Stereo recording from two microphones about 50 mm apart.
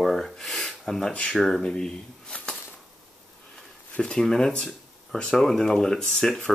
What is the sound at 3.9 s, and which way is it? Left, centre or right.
Speech, centre.